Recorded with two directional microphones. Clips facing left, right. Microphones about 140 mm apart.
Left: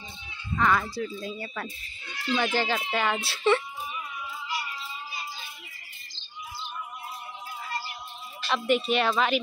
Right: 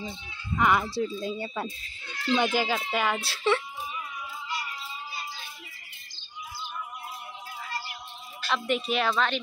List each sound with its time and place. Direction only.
0.6 s speech: 15° right (ahead or behind)
0.8 s speech: 25° right (ahead or behind)
2.3 s speech: 15° right (ahead or behind)
8.5 s speech: centre (ahead or behind)